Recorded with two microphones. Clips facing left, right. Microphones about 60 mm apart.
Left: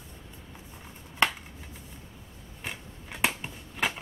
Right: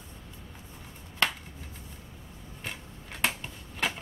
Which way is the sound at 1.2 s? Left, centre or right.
Centre.